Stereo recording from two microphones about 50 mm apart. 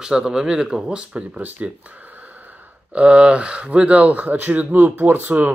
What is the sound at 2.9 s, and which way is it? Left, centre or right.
Speech, right.